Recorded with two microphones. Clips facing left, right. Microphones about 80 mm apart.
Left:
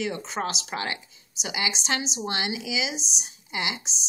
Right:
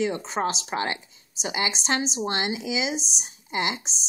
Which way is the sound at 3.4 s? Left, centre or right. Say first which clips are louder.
Right 4 dB; right.